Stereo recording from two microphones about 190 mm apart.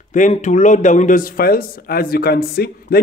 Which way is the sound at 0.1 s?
40° left (ahead or behind).